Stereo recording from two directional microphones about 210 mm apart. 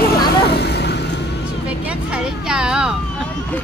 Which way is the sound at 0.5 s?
50° left (ahead or behind).